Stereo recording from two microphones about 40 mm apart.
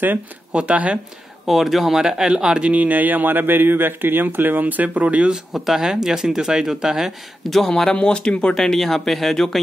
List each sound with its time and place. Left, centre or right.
0.5 s speech: right
1.4 s speech: centre
2.7 s speech: right
4.6 s speech: right
5.3 s speech: centre
7.4 s speech: centre
7.9 s speech: left
8.5 s speech: centre